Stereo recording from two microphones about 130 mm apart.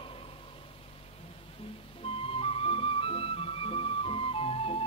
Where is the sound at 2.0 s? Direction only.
45° left (ahead or behind).